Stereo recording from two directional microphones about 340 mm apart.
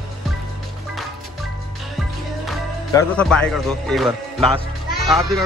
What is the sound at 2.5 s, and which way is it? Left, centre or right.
Speech, centre.